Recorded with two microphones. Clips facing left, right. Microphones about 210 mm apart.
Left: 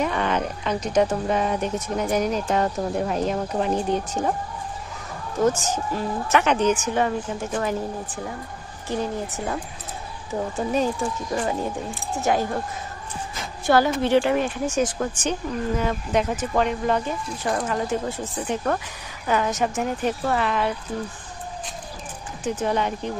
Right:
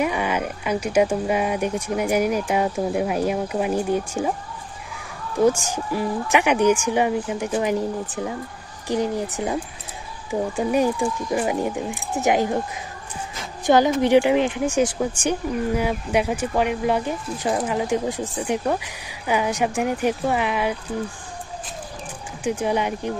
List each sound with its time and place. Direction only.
0.0 s speech: 10° right (ahead or behind)
5.4 s speech: 10° right (ahead or behind)
8.8 s speech: 15° right (ahead or behind)
13.7 s speech: 15° right (ahead or behind)
22.4 s speech: 10° right (ahead or behind)